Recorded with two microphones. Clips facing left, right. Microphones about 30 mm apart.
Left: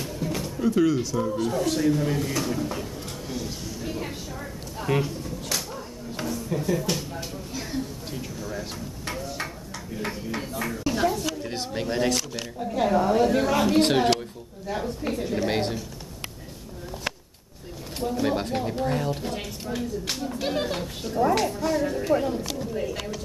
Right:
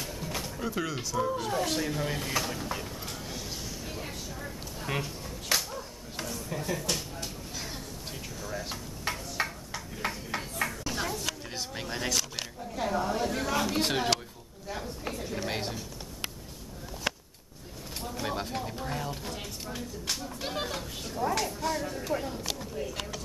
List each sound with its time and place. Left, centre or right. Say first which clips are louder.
0.0 s speech: left 6 dB; centre
3.8 s a sound: left 6 dB; centre
4.8 s speech: left 8 dB; centre
5.6 s a sound: left 3 dB; centre
10.0 s speech: left 2 dB; centre
10.7 s a sound: left 9 dB; centre
11.7 s speech: left 10 dB; centre
12.8 s speech: left 8 dB; left
13.9 s speech: left 7 dB; centre
18.3 s speech: left 7 dB; left
21.5 s speech: left 7 dB; centre